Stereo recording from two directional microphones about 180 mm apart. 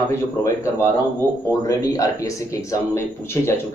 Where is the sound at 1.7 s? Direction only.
20° left (ahead or behind).